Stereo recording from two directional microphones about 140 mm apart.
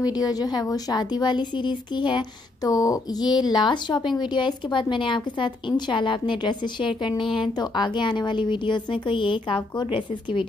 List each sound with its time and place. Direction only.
0.0 s a woman's voice: 30° left (ahead or behind)